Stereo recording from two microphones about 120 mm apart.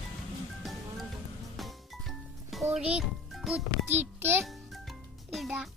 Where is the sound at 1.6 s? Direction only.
Centre (ahead or behind).